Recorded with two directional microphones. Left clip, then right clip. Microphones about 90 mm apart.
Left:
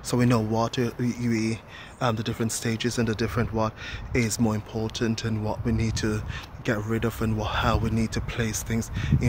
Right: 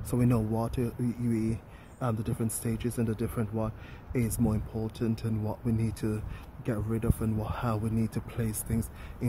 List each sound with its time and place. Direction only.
0.1 s speech: 20° right (ahead or behind)